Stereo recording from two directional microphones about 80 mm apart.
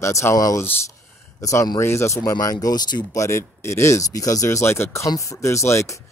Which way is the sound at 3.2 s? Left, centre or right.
Left.